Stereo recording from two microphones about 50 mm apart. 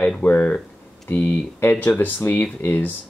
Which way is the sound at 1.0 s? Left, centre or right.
Left.